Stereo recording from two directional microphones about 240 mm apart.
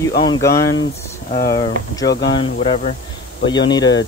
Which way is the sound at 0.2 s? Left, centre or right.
Centre.